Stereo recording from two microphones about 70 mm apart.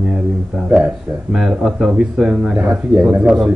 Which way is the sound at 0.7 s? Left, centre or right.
Centre.